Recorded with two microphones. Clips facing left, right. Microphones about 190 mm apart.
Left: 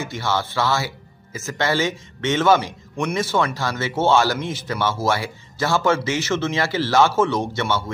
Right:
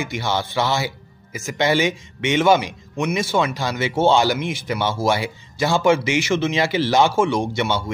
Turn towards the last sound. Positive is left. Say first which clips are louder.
# right 1 dB
turn(degrees=-15)  # may be behind; listen again after turning